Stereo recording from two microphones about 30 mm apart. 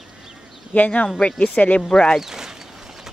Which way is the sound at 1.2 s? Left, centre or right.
Left.